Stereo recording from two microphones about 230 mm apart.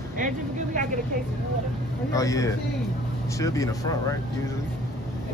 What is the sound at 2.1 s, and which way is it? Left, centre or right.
Speech, centre.